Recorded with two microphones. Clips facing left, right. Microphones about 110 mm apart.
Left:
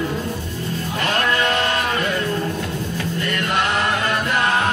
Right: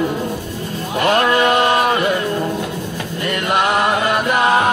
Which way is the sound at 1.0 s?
15° right (ahead or behind).